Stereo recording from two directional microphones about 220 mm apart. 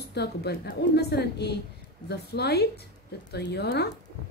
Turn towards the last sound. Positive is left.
turn(degrees=50)  # may be behind; listen again after turning